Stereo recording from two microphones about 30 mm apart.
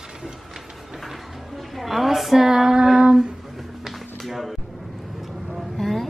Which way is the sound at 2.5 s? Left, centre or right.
Centre.